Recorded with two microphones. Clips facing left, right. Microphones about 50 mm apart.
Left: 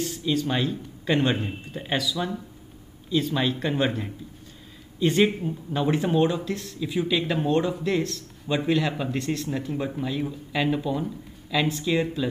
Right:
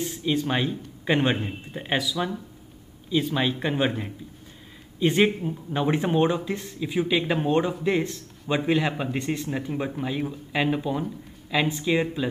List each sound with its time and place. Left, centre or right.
0.0 s speech: centre